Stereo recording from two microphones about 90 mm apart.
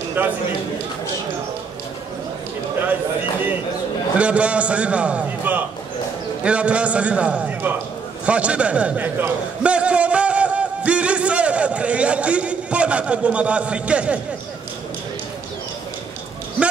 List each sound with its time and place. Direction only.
0.2 s a man's voice: 20° right (ahead or behind)
4.2 s a man's voice: 15° right (ahead or behind)
8.3 s a sound: 15° right (ahead or behind)